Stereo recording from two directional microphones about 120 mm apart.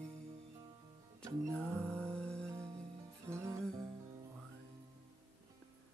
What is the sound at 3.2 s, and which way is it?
Music, 25° right (ahead or behind).